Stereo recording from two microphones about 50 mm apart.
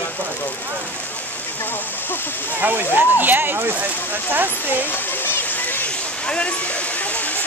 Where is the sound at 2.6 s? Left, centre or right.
Right.